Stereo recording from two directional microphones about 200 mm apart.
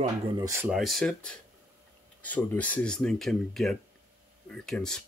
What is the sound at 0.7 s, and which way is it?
Speech, centre (ahead or behind).